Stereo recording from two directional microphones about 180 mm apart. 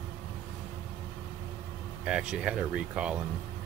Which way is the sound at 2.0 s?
5° right (ahead or behind).